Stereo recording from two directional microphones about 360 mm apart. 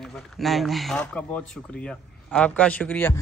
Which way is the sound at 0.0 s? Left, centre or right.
Centre.